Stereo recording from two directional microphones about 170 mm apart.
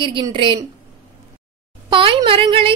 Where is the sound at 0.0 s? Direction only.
30° right (ahead or behind).